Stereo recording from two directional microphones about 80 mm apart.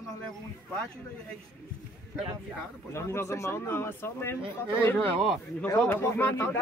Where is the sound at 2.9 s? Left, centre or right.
Left.